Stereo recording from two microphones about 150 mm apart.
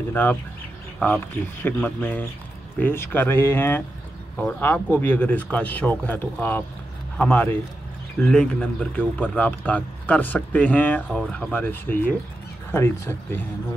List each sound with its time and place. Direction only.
0.1 s speech: 10° left (ahead or behind)